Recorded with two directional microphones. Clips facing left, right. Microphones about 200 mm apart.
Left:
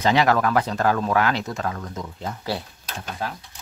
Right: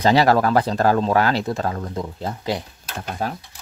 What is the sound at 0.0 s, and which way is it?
Speech, 35° right (ahead or behind).